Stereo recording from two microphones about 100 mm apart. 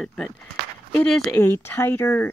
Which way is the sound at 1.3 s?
20° left (ahead or behind).